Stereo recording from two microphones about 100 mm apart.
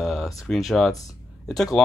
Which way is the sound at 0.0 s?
Centre (ahead or behind).